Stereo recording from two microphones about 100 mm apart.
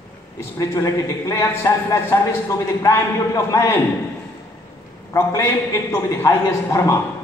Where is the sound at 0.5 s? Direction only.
35° left (ahead or behind).